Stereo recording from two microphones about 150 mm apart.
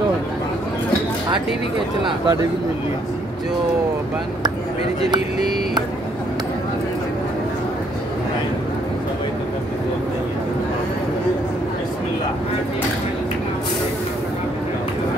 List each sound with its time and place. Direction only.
2.0 s speech: 30° right (ahead or behind)